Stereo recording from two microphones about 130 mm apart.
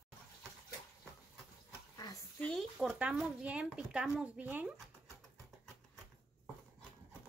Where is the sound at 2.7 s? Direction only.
5° right (ahead or behind).